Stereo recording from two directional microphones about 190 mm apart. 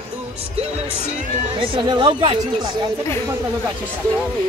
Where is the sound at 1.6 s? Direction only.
25° right (ahead or behind).